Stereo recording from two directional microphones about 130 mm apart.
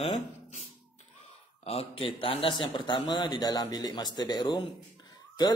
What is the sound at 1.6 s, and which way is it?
A man's voice, 50° left (ahead or behind).